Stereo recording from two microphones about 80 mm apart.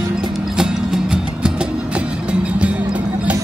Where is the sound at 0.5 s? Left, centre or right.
Centre.